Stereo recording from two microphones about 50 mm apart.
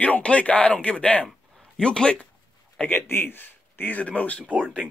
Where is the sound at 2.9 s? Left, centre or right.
Left.